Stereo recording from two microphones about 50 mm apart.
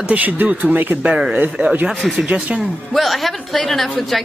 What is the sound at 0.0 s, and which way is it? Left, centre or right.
Speech, right.